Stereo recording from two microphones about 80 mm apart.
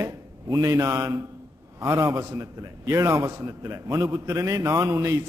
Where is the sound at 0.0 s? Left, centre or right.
Right.